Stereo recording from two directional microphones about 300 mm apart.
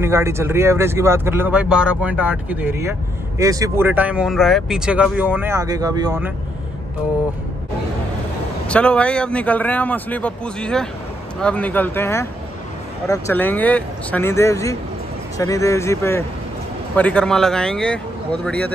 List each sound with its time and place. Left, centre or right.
0.0 s speech: centre
8.6 s a man's voice: centre